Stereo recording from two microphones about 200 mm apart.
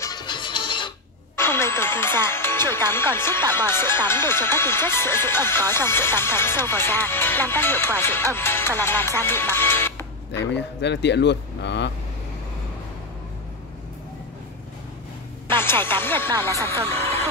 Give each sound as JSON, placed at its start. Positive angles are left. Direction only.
{"t": 0.0, "sound": "music", "side_deg": 20}
{"t": 1.3, "sound": "speech", "side_deg": 10}
{"t": 10.3, "sound": "speech", "side_deg": 60}
{"t": 15.6, "sound": "music", "side_deg": 10}
{"t": 16.9, "sound": "vehicle", "side_deg": 10}